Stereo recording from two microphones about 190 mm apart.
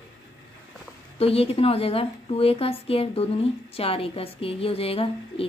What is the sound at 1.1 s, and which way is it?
A woman's voice, 30° left (ahead or behind).